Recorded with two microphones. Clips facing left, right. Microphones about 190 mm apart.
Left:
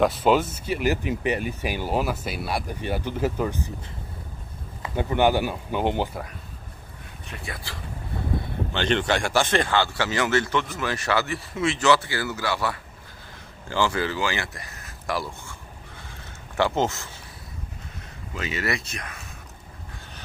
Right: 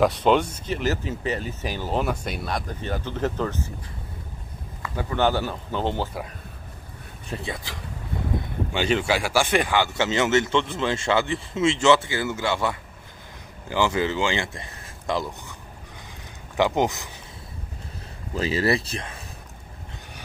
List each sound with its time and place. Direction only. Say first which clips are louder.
0.0 s speech: right 1 dB; 5° left (ahead or behind)
4.8 s speech: left 2 dB; 20° left (ahead or behind)
7.3 s speech: right 8 dB; 30° right (ahead or behind)
8.7 s speech: right 1 dB; 5° right (ahead or behind)
16.5 s speech: right 2 dB; 15° right (ahead or behind)
18.3 s speech: right 6 dB; 30° right (ahead or behind)